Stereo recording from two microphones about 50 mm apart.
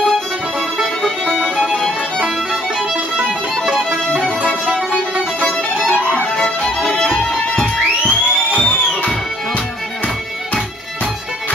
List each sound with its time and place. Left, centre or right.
4.4 s music: right
6.3 s music: centre